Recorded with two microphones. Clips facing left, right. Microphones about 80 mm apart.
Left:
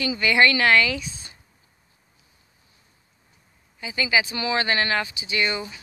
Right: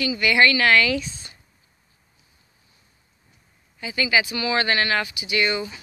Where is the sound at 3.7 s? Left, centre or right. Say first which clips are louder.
Right 1 dB; centre.